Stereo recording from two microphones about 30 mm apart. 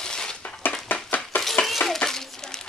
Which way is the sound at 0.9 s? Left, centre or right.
Left.